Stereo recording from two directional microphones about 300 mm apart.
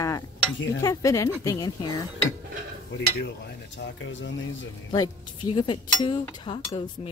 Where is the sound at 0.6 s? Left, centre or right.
Left.